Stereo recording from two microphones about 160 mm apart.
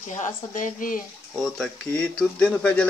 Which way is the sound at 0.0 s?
50° left (ahead or behind).